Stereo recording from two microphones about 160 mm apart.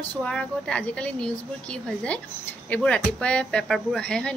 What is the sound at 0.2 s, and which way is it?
A woman's voice, 5° left (ahead or behind).